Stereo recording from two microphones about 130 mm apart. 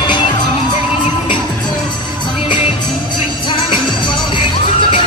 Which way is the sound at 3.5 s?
40° left (ahead or behind).